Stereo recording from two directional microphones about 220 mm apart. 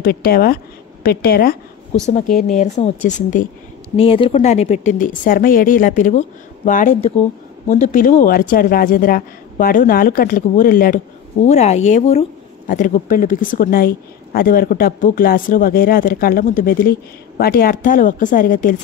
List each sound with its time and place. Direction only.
0.0 s speech: 45° left (ahead or behind)
11.4 s speech: 30° left (ahead or behind)